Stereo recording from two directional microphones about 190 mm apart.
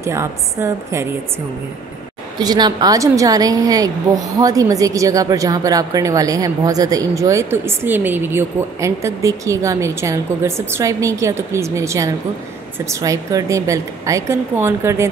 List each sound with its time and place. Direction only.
0.0 s a woman's voice: 15° right (ahead or behind)
2.4 s a woman's voice: 20° right (ahead or behind)